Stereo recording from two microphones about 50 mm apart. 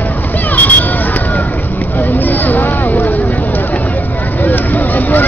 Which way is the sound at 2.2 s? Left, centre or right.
Left.